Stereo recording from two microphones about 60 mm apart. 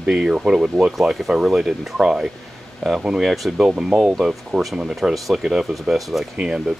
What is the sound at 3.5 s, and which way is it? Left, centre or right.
Speech, centre.